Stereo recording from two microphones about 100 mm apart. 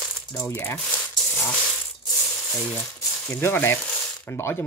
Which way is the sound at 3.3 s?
20° left (ahead or behind).